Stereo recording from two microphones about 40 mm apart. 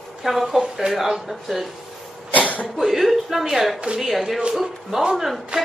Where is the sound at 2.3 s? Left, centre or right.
Left.